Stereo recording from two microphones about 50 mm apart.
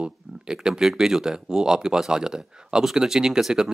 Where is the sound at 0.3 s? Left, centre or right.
Centre.